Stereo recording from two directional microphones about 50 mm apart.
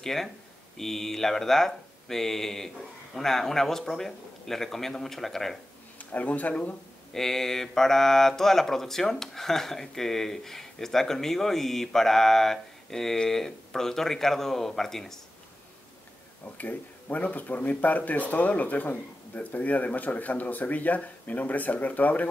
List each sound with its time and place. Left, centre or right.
0.0 s speech: centre
5.9 s a man's voice: left
7.1 s speech: centre
16.5 s speech: left